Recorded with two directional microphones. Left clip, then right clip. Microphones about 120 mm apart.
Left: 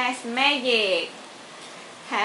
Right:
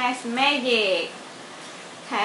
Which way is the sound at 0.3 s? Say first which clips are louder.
Even; 25° left (ahead or behind).